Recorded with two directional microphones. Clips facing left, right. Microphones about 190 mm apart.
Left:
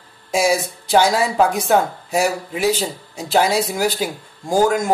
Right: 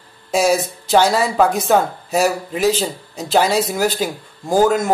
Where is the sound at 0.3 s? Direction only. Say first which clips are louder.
Right 2 dB; 10° left (ahead or behind).